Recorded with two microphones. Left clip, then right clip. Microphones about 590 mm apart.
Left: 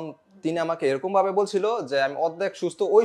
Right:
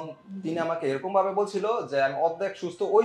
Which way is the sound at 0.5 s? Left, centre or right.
Left.